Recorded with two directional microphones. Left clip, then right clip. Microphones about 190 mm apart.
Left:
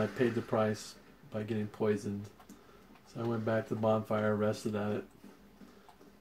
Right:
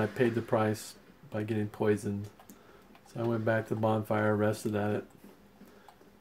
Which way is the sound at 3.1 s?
40° right (ahead or behind).